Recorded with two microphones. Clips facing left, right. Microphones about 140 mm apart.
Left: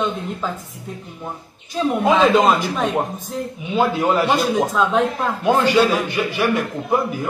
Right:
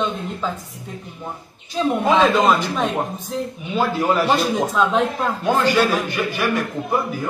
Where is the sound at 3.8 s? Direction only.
15° left (ahead or behind).